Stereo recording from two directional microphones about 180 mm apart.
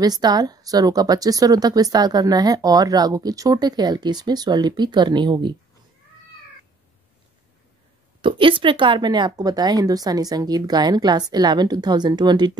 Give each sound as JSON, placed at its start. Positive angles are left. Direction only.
{"t": 0.0, "sound": "a woman's voice", "side_deg": -20}
{"t": 8.2, "sound": "a woman's voice", "side_deg": -30}